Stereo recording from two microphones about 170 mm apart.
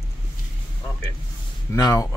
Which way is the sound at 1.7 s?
20° left (ahead or behind).